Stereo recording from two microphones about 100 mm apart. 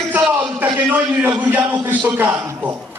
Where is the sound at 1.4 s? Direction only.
15° right (ahead or behind).